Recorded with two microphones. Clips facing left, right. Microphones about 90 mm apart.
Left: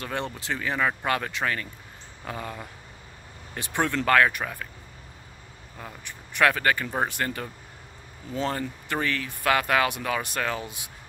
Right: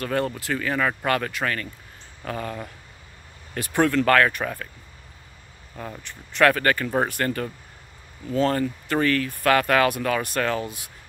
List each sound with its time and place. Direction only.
0.0 s speech: 20° left (ahead or behind)
3.5 s speech: 20° left (ahead or behind)
6.0 s speech: 15° left (ahead or behind)